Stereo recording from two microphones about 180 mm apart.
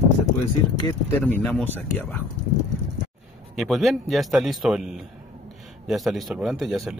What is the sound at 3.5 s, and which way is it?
Speech, centre (ahead or behind).